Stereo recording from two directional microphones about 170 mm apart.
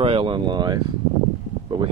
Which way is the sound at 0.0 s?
30° right (ahead or behind).